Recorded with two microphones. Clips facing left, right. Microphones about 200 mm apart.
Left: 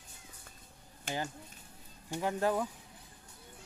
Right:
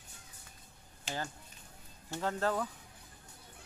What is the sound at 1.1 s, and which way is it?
Speech, 55° left (ahead or behind).